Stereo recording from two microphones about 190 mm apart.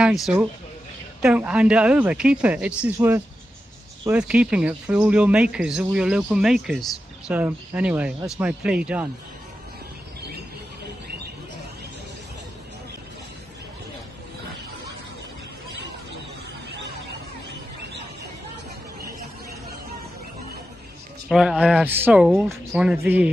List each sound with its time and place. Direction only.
0.0 s speech: centre (ahead or behind)
21.3 s speech: centre (ahead or behind)